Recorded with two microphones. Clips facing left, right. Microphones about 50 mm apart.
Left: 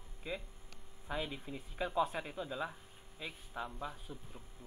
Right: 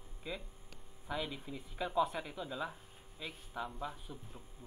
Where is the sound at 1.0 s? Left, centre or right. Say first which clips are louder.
Even; centre.